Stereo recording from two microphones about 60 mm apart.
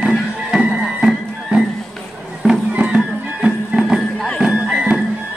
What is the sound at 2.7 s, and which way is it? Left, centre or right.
Music, centre.